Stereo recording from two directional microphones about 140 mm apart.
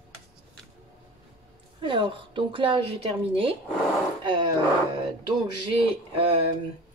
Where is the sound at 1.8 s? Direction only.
35° right (ahead or behind).